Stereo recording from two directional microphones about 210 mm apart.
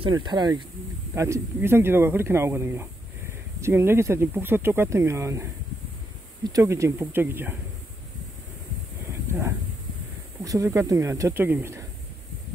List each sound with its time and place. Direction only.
0.0 s speech: 20° right (ahead or behind)
9.1 s a sound: 10° right (ahead or behind)
10.4 s speech: 15° right (ahead or behind)